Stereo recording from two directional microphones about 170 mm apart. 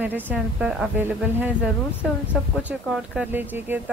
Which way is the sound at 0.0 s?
10° right (ahead or behind).